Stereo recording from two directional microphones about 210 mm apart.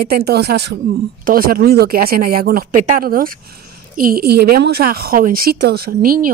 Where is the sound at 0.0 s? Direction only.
50° right (ahead or behind).